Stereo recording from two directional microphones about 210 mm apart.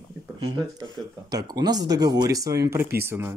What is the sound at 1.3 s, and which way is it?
Speech, 20° right (ahead or behind).